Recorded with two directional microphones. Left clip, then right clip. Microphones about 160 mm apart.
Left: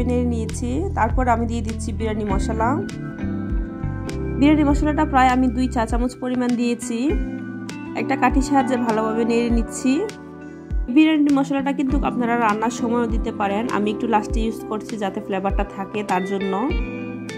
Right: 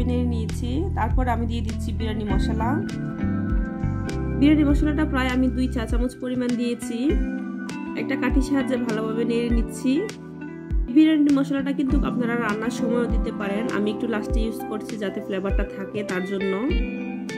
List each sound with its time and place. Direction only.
0.0 s a woman's voice: 5° left (ahead or behind)
4.4 s speech: 15° left (ahead or behind)
8.0 s speech: 15° left (ahead or behind)
11.0 s a woman's voice: 10° left (ahead or behind)